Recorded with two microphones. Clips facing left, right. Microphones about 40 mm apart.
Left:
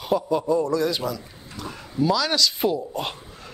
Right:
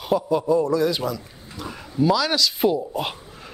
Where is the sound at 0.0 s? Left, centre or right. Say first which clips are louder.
Right 1 dB; centre.